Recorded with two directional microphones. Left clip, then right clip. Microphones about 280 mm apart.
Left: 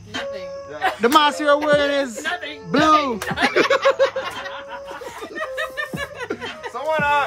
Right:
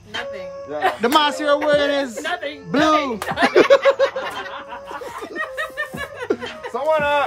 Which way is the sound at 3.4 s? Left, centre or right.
Centre.